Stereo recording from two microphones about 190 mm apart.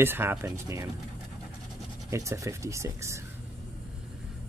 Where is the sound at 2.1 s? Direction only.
15° right (ahead or behind).